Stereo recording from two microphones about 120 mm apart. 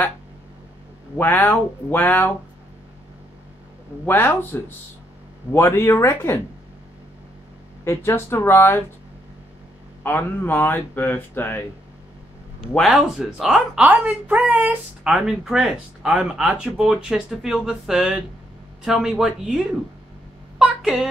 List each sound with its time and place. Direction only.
1.1 s speech: 15° left (ahead or behind)
4.0 s speech: 15° left (ahead or behind)
7.8 s speech: 20° left (ahead or behind)
10.0 s speech: 15° left (ahead or behind)
12.8 s speech: 5° right (ahead or behind)